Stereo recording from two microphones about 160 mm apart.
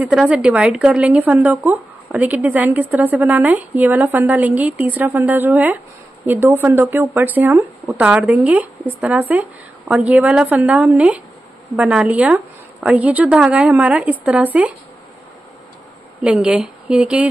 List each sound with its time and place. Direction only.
0.0 s speech: 5° right (ahead or behind)
16.2 s speech: 5° right (ahead or behind)